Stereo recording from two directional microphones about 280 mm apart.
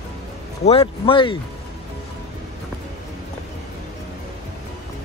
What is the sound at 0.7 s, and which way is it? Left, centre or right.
Speech, centre.